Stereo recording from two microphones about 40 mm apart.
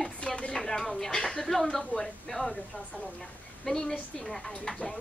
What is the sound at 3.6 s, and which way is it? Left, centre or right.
Speech, centre.